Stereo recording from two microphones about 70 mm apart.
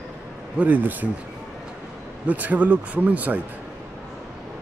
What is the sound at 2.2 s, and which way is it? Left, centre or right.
Speech, right.